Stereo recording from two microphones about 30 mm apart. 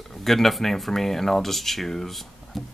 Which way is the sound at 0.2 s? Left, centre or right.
Centre.